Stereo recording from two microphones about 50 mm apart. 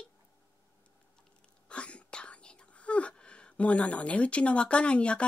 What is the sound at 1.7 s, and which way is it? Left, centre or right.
Whispering, left.